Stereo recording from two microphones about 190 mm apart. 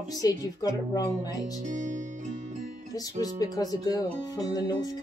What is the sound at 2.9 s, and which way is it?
Speech, 20° left (ahead or behind).